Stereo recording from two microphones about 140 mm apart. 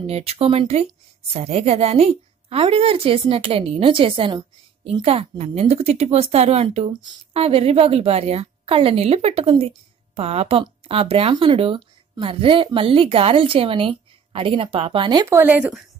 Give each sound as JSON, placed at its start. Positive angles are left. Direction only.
{"t": 0.0, "sound": "a woman's voice", "side_deg": -45}
{"t": 6.9, "sound": "speech", "side_deg": -30}
{"t": 7.3, "sound": "a woman's voice", "side_deg": -45}
{"t": 15.2, "sound": "speech", "side_deg": -15}